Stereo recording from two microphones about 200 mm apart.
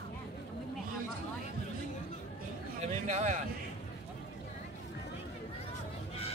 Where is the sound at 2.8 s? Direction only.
35° right (ahead or behind).